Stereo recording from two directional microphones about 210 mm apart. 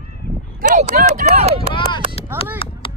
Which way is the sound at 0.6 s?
40° right (ahead or behind).